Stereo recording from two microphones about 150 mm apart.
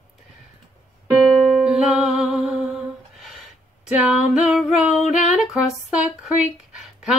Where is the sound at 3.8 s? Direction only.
10° right (ahead or behind).